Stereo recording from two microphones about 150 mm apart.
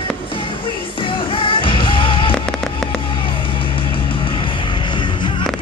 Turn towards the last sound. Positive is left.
turn(degrees=30)  # may be behind; listen again after turning